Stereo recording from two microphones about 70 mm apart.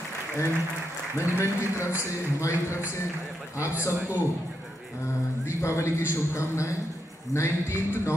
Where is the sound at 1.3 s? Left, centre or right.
Left.